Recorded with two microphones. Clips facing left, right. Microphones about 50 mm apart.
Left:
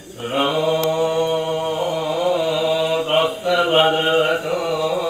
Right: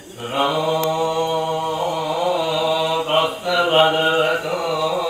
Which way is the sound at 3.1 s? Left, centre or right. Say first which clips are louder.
Left 1 dB; left.